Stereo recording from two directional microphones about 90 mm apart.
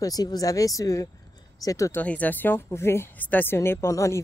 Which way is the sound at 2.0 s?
15° left (ahead or behind).